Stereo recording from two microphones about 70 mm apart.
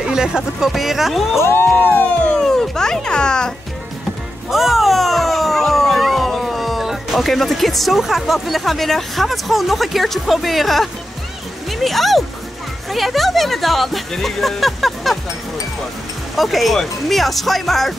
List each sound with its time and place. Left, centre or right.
0.0 s speech: centre
1.4 s music: left
2.3 s music: centre
4.5 s speech: centre
11.7 s a sound: centre
12.9 s speech: centre
16.3 s speech: centre